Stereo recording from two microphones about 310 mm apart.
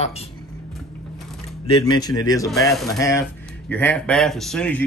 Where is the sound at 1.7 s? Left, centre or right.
Centre.